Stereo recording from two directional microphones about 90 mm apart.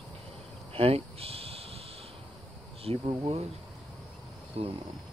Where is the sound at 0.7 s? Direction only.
90° right.